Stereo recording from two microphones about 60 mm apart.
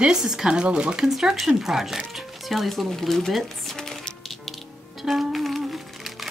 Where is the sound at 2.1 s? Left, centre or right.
Centre.